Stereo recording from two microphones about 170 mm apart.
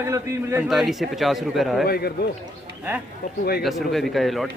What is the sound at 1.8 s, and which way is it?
Speech, 65° left (ahead or behind).